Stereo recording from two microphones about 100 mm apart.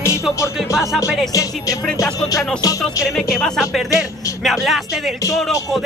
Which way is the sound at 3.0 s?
Centre (ahead or behind).